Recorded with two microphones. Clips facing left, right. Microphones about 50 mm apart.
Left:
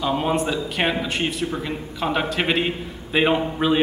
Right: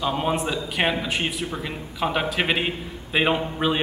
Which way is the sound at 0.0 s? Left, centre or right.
Centre.